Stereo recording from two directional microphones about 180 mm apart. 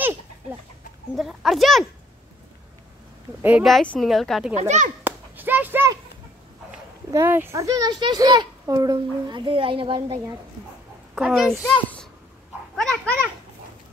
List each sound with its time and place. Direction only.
1.1 s speech: centre (ahead or behind)
3.4 s speech: 5° right (ahead or behind)
4.6 s speech: 40° right (ahead or behind)
5.0 s a sound: 10° right (ahead or behind)
7.1 s a child's voice: 15° right (ahead or behind)
11.1 s a child's voice: centre (ahead or behind)
12.7 s dog: 5° left (ahead or behind)